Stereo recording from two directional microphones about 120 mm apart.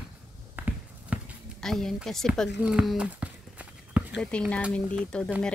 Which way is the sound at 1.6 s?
Centre (ahead or behind).